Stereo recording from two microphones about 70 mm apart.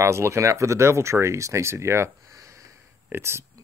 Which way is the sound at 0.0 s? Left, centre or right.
Right.